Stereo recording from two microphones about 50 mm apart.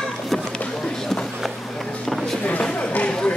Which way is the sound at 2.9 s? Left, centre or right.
Left.